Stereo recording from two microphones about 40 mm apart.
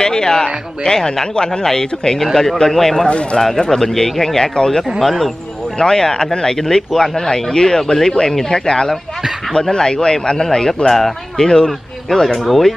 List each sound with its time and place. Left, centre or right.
0.0 s speech: centre
3.1 s speech: left
3.3 s speech: centre
11.4 s speech: centre
12.4 s speech: centre